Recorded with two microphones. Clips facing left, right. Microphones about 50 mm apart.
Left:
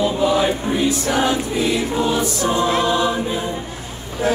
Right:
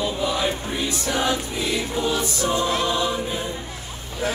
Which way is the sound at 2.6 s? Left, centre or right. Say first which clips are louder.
Left 5 dB; left.